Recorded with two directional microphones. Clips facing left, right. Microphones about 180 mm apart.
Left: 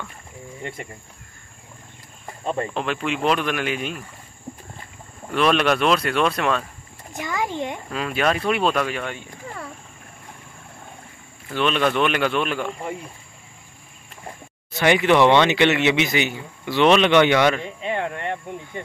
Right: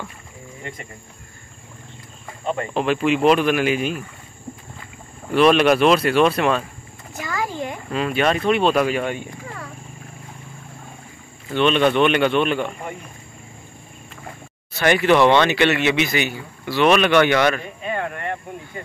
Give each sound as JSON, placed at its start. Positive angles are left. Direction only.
{"t": 2.7, "sound": "speech", "side_deg": -5}
{"t": 5.3, "sound": "speech", "side_deg": -5}
{"t": 7.2, "sound": "a sound", "side_deg": 20}
{"t": 7.9, "sound": "speech", "side_deg": 0}
{"t": 8.7, "sound": "speech", "side_deg": -10}
{"t": 11.5, "sound": "speech", "side_deg": 0}
{"t": 14.7, "sound": "speech", "side_deg": 15}